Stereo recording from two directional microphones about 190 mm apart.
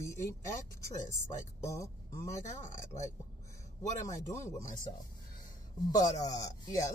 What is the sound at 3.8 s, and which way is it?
Speech, 15° left (ahead or behind).